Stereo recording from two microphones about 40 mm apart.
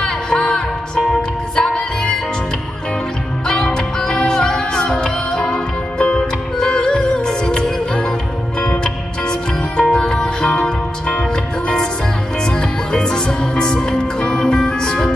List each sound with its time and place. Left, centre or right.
0.0 s music: centre
3.7 s music: centre